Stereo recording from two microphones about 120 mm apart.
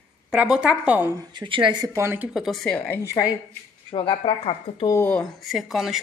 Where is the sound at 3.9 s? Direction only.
50° left (ahead or behind).